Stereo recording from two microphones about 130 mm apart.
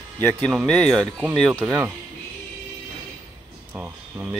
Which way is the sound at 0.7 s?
5° left (ahead or behind).